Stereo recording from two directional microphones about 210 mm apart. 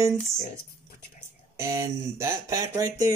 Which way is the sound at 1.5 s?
15° right (ahead or behind).